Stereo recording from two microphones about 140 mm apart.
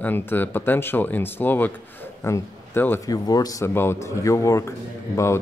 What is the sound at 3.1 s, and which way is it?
Speech, 25° left (ahead or behind).